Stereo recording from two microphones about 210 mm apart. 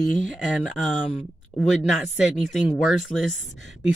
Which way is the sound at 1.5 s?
30° left (ahead or behind).